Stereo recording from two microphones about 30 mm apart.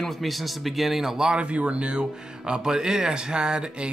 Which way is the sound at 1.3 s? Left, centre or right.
Right.